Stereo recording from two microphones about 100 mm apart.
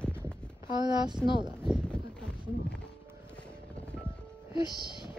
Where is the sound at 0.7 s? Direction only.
45° right (ahead or behind).